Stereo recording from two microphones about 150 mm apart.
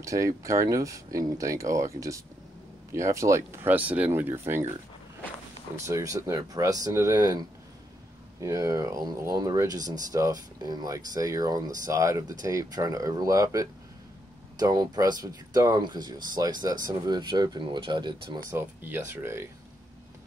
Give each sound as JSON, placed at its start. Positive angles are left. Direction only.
{"t": 0.0, "sound": "speech", "side_deg": -20}
{"t": 5.8, "sound": "speech", "side_deg": -20}
{"t": 18.5, "sound": "speech", "side_deg": -15}